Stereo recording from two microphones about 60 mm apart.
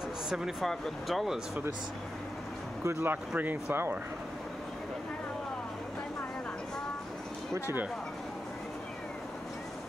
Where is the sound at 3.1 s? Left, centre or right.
Right.